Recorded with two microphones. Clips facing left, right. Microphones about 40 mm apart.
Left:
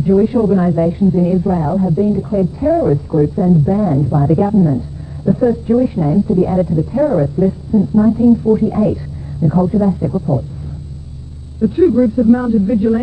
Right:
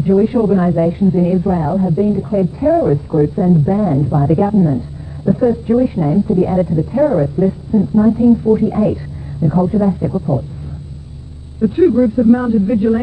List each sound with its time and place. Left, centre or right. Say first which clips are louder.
0.0 s a woman's voice: even; centre
11.6 s a woman's voice: even; centre